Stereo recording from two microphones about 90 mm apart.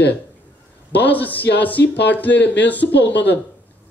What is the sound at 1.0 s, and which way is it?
Speech, 20° left (ahead or behind).